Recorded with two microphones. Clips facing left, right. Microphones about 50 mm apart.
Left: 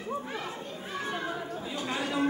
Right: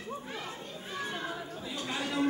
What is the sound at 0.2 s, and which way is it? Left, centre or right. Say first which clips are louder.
Children playing: left 4 dB; centre.